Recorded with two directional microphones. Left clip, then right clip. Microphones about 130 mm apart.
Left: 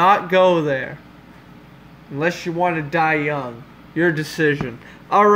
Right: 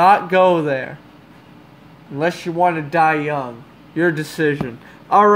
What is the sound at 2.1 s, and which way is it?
A man's voice, 20° right (ahead or behind).